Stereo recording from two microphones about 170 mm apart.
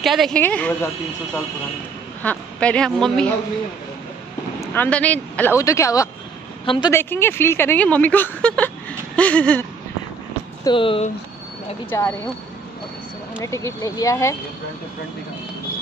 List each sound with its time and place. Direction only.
0.0 s a woman's voice: centre (ahead or behind)
4.6 s speech: 10° left (ahead or behind)
6.6 s a woman's voice: 30° left (ahead or behind)
6.9 s speech: 15° left (ahead or behind)
10.6 s speech: 30° left (ahead or behind)
11.9 s speech: 10° left (ahead or behind)
13.4 s speech: 15° left (ahead or behind)